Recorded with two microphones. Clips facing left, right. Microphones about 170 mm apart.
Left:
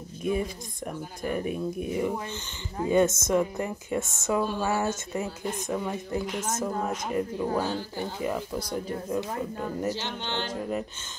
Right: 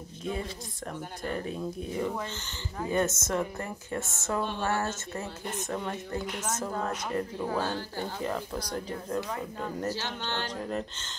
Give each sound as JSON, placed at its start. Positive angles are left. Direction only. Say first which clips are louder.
{"t": 0.2, "sound": "a woman's voice", "louder": "left 6 dB", "side_deg": 15}
{"t": 9.8, "sound": "a woman's voice", "louder": "left 2 dB", "side_deg": 15}